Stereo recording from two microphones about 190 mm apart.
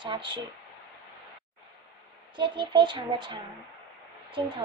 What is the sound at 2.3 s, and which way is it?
Speech, 25° right (ahead or behind).